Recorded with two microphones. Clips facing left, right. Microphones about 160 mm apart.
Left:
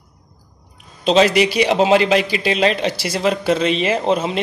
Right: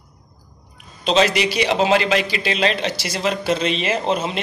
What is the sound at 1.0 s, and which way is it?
A man's voice, 45° left (ahead or behind).